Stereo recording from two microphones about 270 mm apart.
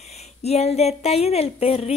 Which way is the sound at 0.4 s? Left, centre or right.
Left.